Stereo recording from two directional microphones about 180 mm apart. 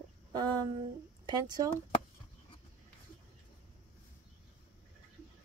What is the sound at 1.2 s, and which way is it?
Speech, 25° right (ahead or behind).